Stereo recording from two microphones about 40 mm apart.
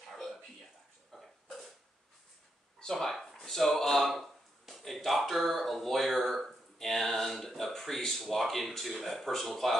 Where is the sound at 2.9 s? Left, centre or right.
Centre.